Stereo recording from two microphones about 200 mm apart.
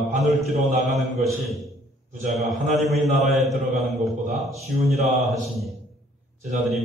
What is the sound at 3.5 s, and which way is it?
Speech, 30° right (ahead or behind).